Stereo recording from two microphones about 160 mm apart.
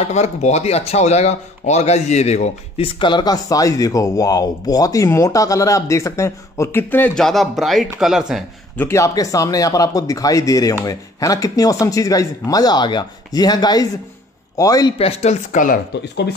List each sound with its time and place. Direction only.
0.0 s speech: 45° left (ahead or behind)
3.0 s speech: 30° left (ahead or behind); by 8.5 s 5° right (ahead or behind)
8.7 s speech: 15° left (ahead or behind)
15.0 s speech: 40° left (ahead or behind)
15.5 s speech: 55° left (ahead or behind)